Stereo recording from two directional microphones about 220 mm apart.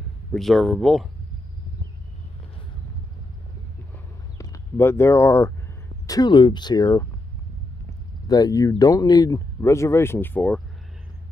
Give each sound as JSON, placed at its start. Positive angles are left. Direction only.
{"t": 0.3, "sound": "speech", "side_deg": 0}
{"t": 4.4, "sound": "speech", "side_deg": 15}
{"t": 8.3, "sound": "speech", "side_deg": 15}